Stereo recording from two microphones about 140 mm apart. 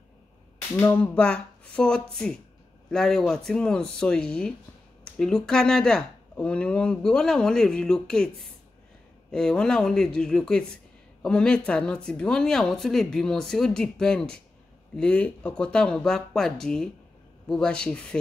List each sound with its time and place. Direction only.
0.7 s speech: 15° left (ahead or behind)